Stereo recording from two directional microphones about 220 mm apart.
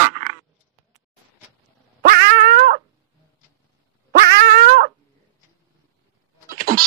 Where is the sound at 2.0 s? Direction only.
40° right (ahead or behind).